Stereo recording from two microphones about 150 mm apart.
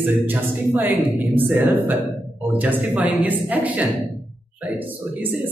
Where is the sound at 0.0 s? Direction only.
10° right (ahead or behind).